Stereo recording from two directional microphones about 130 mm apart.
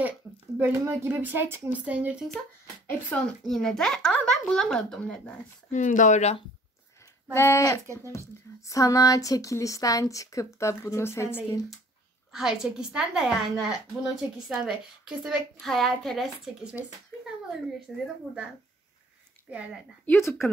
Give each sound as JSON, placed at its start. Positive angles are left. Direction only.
{"t": 0.6, "sound": "speech", "side_deg": -20}
{"t": 3.1, "sound": "a woman's voice", "side_deg": 5}
{"t": 5.7, "sound": "speech", "side_deg": 75}
{"t": 7.3, "sound": "a woman's voice", "side_deg": 20}
{"t": 7.8, "sound": "speech", "side_deg": -20}
{"t": 8.6, "sound": "a woman's voice", "side_deg": 25}
{"t": 12.3, "sound": "a woman's voice", "side_deg": -5}
{"t": 19.5, "sound": "speech", "side_deg": -10}
{"t": 20.1, "sound": "a woman's voice", "side_deg": 20}